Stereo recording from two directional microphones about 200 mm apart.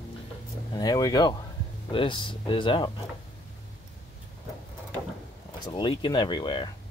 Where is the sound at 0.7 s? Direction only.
20° left (ahead or behind).